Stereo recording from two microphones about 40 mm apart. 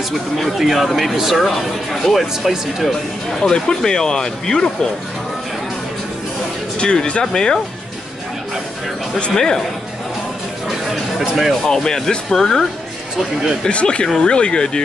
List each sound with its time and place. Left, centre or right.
0.4 s speech: centre
6.8 s speech: left
9.3 s speech: centre
11.1 s speech: centre
11.6 s speech: centre
13.7 s speech: left